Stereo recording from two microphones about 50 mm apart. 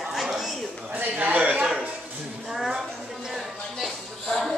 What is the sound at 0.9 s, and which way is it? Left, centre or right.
Speech, right.